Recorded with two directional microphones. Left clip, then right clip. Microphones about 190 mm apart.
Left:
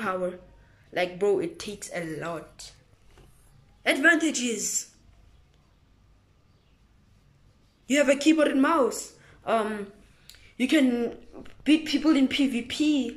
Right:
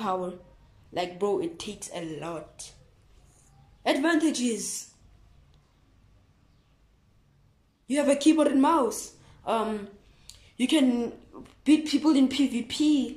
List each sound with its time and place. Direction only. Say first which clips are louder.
0.0 s a woman's voice: left 1 dB; 20° right (ahead or behind)
3.8 s a woman's voice: left 3 dB; 20° right (ahead or behind)
7.8 s a woman's voice: left 1 dB; 25° right (ahead or behind)
8.7 s a woman's voice: left 1 dB; 15° right (ahead or behind)